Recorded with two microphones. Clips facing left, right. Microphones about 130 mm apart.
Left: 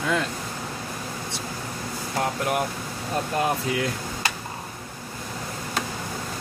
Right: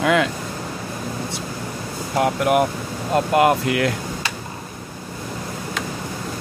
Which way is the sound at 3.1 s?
85° right.